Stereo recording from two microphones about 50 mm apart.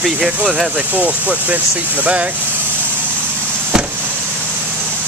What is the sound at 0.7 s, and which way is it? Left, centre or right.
Speech, right.